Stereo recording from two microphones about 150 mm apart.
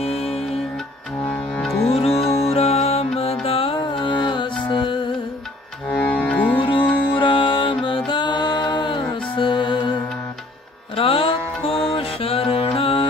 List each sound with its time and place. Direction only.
0.0 s music: 40° left (ahead or behind)
1.2 s music: 10° left (ahead or behind)
1.9 s music: 40° left (ahead or behind)
5.9 s music: 10° left (ahead or behind)
7.2 s music: 35° left (ahead or behind)
11.0 s music: 35° left (ahead or behind)